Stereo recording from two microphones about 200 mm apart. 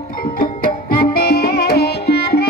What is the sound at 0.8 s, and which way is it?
Music, 50° left (ahead or behind).